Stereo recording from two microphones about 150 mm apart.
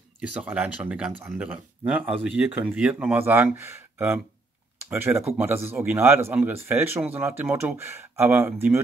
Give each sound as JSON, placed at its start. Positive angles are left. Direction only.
{"t": 0.4, "sound": "speech", "side_deg": -10}